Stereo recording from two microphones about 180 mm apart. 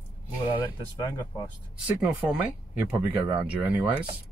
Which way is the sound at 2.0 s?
10° right (ahead or behind).